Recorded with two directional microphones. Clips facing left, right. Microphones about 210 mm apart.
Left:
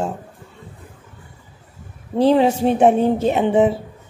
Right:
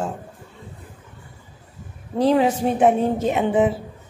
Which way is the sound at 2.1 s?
30° left (ahead or behind).